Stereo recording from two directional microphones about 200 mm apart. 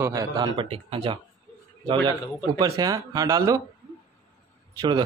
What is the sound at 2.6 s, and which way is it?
Speech, 20° right (ahead or behind).